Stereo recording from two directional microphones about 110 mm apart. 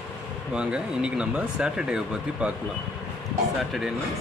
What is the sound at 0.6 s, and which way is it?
Speech, 10° right (ahead or behind).